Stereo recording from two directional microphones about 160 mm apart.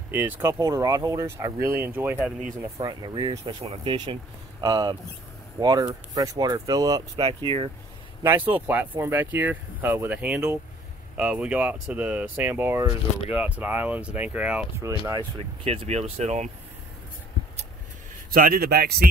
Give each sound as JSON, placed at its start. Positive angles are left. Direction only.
{"t": 0.1, "sound": "speech", "side_deg": -15}
{"t": 2.8, "sound": "speech", "side_deg": -25}
{"t": 3.5, "sound": "speech", "side_deg": -40}
{"t": 3.9, "sound": "speech", "side_deg": -25}
{"t": 7.2, "sound": "speech", "side_deg": -35}
{"t": 8.2, "sound": "speech", "side_deg": -10}
{"t": 14.8, "sound": "speech", "side_deg": -20}
{"t": 15.6, "sound": "speech", "side_deg": -40}
{"t": 18.3, "sound": "speech", "side_deg": -65}